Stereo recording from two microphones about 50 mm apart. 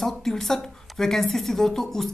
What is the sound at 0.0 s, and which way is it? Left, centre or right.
Speech, centre.